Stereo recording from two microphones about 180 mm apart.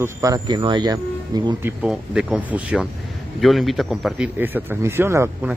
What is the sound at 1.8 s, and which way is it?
A man's voice, 5° right (ahead or behind).